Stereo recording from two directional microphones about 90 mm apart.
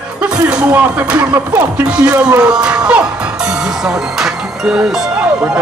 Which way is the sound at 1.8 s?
10° right (ahead or behind).